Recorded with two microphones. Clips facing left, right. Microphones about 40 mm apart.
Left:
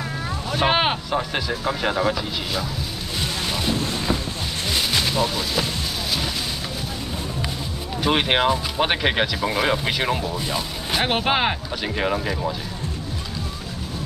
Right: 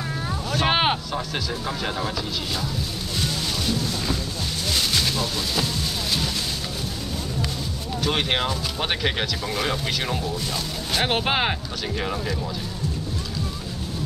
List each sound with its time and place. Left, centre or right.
0.7 s a sound: centre
1.1 s speech: left
3.7 s boat: left
4.7 s a sound: centre
8.0 s speech: centre
11.1 s speech: centre
12.0 s speech: left